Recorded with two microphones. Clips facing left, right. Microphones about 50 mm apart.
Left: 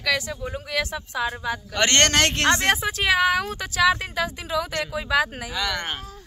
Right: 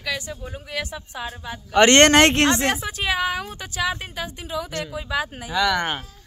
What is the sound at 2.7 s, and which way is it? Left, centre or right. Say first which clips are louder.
A woman's voice: left 3 dB; left.